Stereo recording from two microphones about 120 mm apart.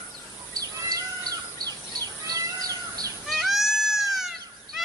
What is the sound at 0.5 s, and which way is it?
Bird, 30° right (ahead or behind).